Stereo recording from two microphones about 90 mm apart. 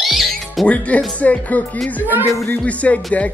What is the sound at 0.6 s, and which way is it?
Speech, 15° left (ahead or behind).